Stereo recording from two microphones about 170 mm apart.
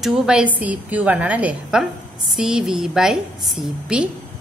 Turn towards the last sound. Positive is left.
turn(degrees=-5)  # may be behind; listen again after turning